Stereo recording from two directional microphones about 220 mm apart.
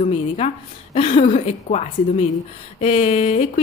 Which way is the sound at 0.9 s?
30° left (ahead or behind).